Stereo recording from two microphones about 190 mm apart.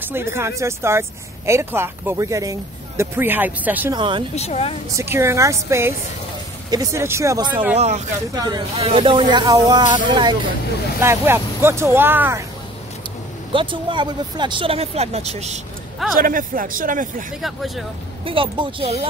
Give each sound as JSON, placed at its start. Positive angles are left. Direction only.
{"t": 0.0, "sound": "speech", "side_deg": -10}
{"t": 3.9, "sound": "speech", "side_deg": -25}
{"t": 4.4, "sound": "speech", "side_deg": 35}
{"t": 4.9, "sound": "speech", "side_deg": -15}
{"t": 7.7, "sound": "speech", "side_deg": -35}
{"t": 8.4, "sound": "speech", "side_deg": -20}
{"t": 11.0, "sound": "speech", "side_deg": -15}
{"t": 13.5, "sound": "speech", "side_deg": -25}
{"t": 16.2, "sound": "speech", "side_deg": -45}
{"t": 17.4, "sound": "speech", "side_deg": 0}
{"t": 18.2, "sound": "speech", "side_deg": -25}